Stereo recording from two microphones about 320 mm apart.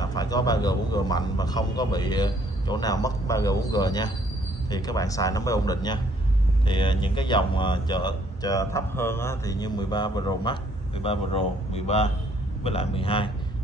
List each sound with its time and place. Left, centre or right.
0.0 s speech: centre